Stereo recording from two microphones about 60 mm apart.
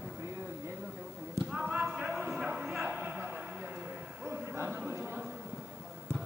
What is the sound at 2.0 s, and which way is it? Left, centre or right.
Music, centre.